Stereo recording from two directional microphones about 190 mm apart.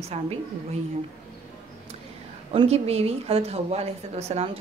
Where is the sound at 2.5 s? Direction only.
30° right (ahead or behind).